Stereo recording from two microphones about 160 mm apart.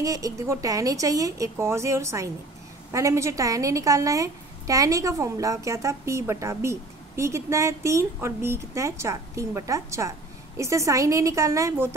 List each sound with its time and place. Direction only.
0.0 s a woman's voice: 20° right (ahead or behind)